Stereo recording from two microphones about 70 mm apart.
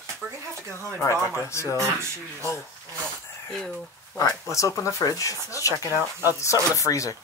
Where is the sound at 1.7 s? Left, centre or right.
Right.